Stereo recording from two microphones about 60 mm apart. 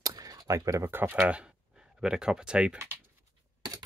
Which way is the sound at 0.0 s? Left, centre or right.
Right.